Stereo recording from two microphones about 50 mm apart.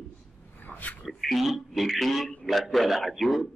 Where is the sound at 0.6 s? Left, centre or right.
Left.